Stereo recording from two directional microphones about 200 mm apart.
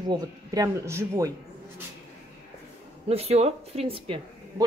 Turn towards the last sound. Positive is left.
turn(degrees=-25)  # may be behind; listen again after turning